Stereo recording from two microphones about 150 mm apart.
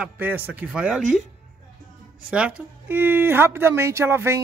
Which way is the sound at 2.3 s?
10° right (ahead or behind).